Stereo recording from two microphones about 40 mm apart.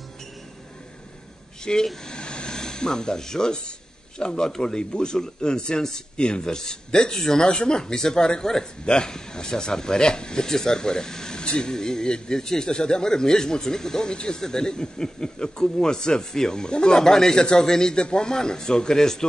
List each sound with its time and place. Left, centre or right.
1.6 s speech: centre
2.0 s a sound: left
4.2 s speech: centre